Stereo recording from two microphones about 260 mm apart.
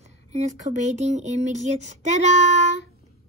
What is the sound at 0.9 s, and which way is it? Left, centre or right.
Speech, right.